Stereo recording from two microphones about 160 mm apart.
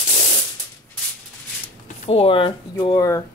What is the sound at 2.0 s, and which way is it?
A woman's voice, 35° left (ahead or behind).